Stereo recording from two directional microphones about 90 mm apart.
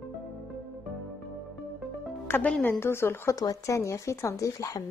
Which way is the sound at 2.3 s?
25° left (ahead or behind).